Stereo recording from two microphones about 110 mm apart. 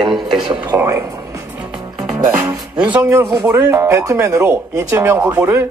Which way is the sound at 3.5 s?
20° right (ahead or behind).